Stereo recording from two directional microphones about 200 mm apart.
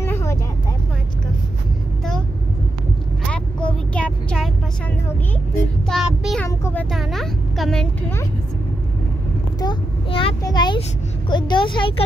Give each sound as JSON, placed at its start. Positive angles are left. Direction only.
{"t": 0.0, "sound": "vehicle", "side_deg": 15}
{"t": 3.3, "sound": "vehicle", "side_deg": 5}
{"t": 5.9, "sound": "child singing", "side_deg": 0}
{"t": 6.4, "sound": "a sound", "side_deg": 10}
{"t": 9.6, "sound": "a sound", "side_deg": 25}
{"t": 11.2, "sound": "vehicle", "side_deg": 25}